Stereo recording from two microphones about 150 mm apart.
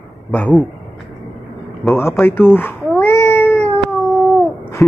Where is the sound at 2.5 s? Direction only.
10° left (ahead or behind).